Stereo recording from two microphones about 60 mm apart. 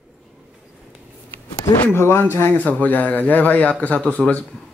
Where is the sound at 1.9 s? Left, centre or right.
Left.